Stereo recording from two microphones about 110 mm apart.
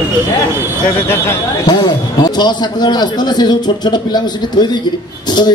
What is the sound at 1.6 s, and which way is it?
Speech, 40° left (ahead or behind).